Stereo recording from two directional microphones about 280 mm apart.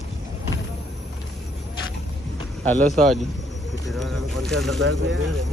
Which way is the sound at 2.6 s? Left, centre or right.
Centre.